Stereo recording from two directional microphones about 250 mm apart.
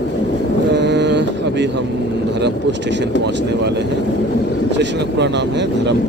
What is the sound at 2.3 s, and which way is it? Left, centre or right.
Speech, right.